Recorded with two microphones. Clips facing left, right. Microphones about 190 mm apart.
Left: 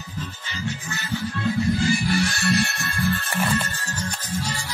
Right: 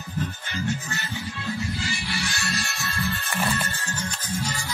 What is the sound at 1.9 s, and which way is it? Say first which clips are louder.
Music: left 9 dB; 45° left (ahead or behind).